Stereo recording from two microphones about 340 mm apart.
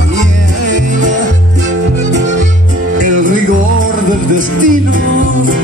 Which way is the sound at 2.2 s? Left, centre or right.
Right.